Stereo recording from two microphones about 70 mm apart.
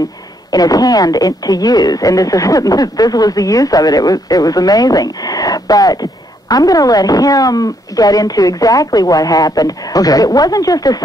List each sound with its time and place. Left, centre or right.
0.5 s speech: left